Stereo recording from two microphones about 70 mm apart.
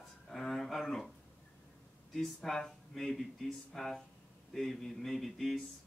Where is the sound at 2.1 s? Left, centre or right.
Centre.